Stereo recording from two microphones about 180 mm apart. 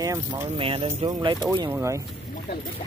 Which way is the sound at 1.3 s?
20° right (ahead or behind).